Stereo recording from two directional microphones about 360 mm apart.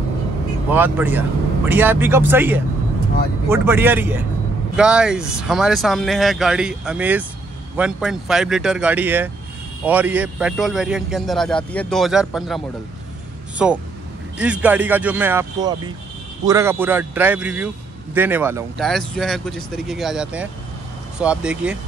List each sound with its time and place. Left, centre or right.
0.7 s speech: centre